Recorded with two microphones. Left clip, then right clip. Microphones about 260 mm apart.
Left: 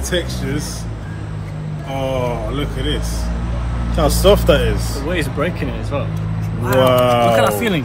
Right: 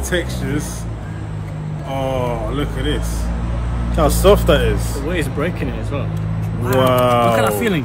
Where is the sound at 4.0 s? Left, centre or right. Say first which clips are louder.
Even; right.